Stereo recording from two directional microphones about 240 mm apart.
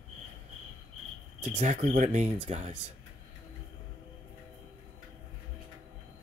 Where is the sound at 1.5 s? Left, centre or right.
Right.